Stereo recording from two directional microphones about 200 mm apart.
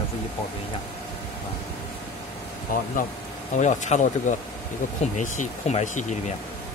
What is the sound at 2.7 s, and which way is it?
Speech, 45° left (ahead or behind).